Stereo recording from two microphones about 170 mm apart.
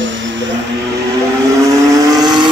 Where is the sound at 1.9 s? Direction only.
20° right (ahead or behind).